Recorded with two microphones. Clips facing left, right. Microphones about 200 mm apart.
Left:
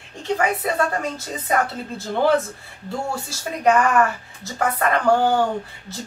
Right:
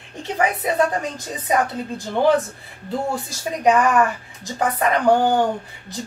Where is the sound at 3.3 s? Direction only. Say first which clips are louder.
Even; 15° right (ahead or behind).